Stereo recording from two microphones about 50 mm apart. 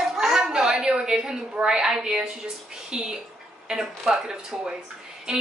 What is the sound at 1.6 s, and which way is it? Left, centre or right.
A woman's voice, centre.